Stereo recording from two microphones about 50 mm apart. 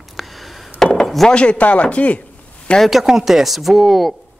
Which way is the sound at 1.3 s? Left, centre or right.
Left.